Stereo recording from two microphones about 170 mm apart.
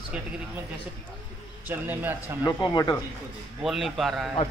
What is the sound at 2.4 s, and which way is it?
Speech, 25° left (ahead or behind).